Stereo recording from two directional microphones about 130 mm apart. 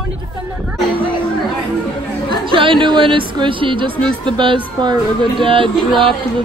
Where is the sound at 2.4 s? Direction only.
40° right (ahead or behind).